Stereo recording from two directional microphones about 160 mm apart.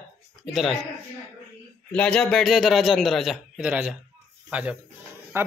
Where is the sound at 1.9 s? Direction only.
5° left (ahead or behind); by 5.5 s 15° right (ahead or behind).